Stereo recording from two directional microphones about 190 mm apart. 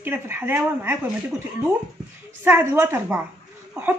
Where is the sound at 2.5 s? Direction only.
10° right (ahead or behind).